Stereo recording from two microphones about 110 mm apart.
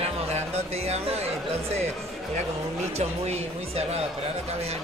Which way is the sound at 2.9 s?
70° right (ahead or behind).